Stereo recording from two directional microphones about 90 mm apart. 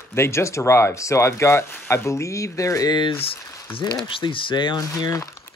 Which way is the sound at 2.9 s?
80° left.